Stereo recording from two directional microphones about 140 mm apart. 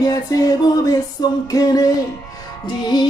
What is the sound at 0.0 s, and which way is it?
Music, 25° left (ahead or behind).